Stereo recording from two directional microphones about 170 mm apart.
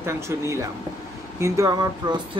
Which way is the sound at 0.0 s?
15° right (ahead or behind).